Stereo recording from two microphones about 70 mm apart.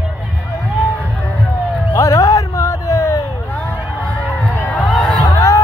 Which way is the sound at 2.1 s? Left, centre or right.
Left.